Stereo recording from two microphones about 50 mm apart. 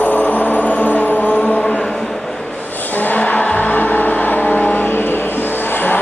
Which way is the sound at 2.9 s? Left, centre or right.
Left.